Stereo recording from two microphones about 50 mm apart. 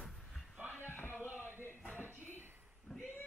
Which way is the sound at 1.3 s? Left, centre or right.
Right.